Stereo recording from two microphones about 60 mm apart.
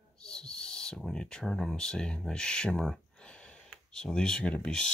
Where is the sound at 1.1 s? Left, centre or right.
Centre.